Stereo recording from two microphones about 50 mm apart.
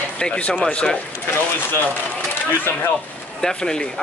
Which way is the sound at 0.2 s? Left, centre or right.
Left.